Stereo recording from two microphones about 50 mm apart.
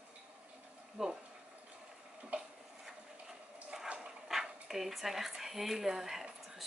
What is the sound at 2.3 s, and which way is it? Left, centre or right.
Tick-tock, right.